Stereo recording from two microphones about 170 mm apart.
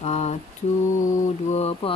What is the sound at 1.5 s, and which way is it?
Speech, 40° left (ahead or behind).